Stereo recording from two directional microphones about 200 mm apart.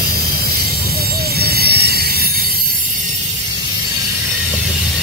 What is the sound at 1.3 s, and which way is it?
Train, 50° right (ahead or behind).